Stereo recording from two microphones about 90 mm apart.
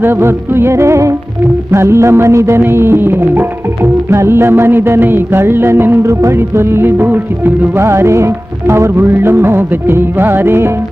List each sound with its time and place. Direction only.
0.0 s music: 25° right (ahead or behind)